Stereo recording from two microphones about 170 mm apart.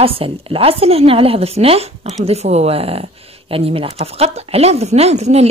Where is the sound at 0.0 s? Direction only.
35° right (ahead or behind).